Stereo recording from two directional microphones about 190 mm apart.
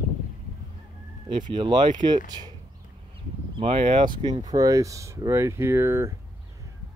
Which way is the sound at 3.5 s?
30° right (ahead or behind).